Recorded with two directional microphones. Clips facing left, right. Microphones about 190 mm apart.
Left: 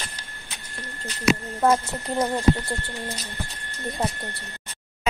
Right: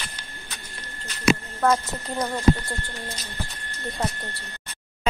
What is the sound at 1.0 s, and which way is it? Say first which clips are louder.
Speech: even; 15° left (ahead or behind).